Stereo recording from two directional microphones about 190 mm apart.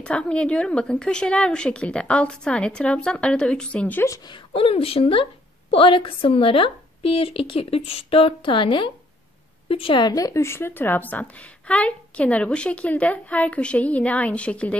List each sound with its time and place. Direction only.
0.0 s a woman's voice: 5° left (ahead or behind)
4.6 s a woman's voice: 30° left (ahead or behind); by 14.8 s 5° left (ahead or behind)